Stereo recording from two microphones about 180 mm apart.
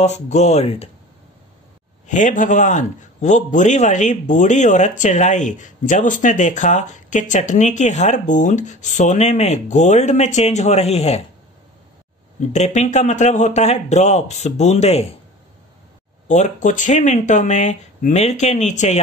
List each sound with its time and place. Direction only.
0.3 s speech: 40° left (ahead or behind)
2.0 s a man's voice: 45° left (ahead or behind)
12.5 s speech: 40° left (ahead or behind)
16.3 s speech: 40° left (ahead or behind)